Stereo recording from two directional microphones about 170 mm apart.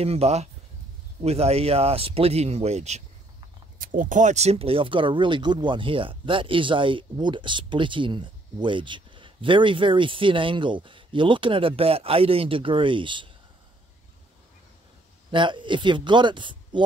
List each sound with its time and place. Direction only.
0.0 s speech: 35° right (ahead or behind)
3.7 s speech: 55° right (ahead or behind); by 13.3 s 30° right (ahead or behind)
15.3 s speech: 30° right (ahead or behind)